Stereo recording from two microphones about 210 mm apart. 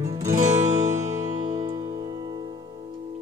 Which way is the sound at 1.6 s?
20° right (ahead or behind).